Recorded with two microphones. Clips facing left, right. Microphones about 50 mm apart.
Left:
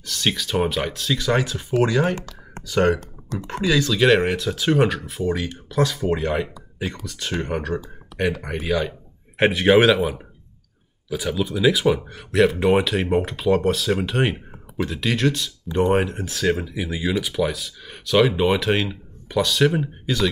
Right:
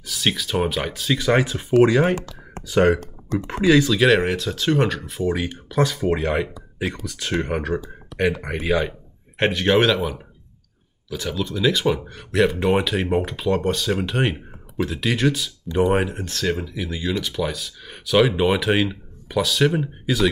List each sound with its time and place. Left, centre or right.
0.0 s speech: centre
1.1 s speech: centre
4.0 s speech: centre
5.3 s speech: centre
8.6 s speech: centre
9.4 s speech: centre